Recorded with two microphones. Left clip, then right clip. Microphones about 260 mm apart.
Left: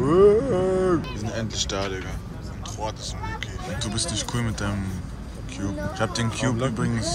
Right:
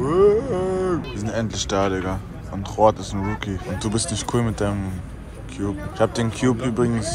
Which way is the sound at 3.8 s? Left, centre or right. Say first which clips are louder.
Right 3 dB; centre.